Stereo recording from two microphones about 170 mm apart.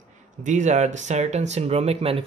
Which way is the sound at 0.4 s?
45° right (ahead or behind).